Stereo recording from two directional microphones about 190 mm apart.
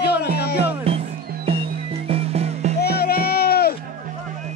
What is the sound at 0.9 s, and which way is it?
Music, 30° right (ahead or behind).